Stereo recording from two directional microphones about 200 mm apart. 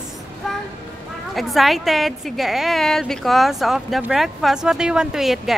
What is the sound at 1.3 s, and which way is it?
A woman's voice, centre (ahead or behind).